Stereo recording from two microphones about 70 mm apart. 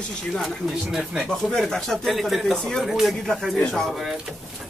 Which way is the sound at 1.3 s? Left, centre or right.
Centre.